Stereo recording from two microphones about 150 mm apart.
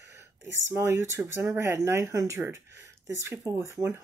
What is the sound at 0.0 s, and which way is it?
Speech, 15° right (ahead or behind).